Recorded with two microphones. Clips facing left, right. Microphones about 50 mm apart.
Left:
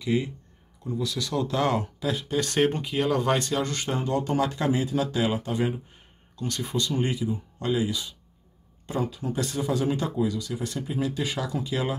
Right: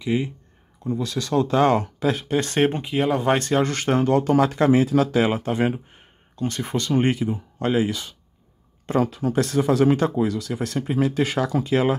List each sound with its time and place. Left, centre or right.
0.0 s speech: right
0.8 s speech: right
1.8 s speech: right
3.3 s speech: right
3.9 s speech: right
6.9 s speech: right
8.8 s speech: right